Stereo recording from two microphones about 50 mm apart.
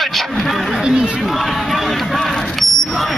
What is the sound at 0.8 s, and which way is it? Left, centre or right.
Chatter, centre.